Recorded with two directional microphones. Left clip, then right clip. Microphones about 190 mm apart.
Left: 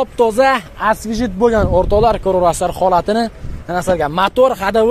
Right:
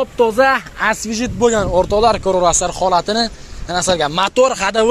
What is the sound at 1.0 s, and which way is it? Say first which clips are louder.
Speech: left 1 dB; 20° left (ahead or behind).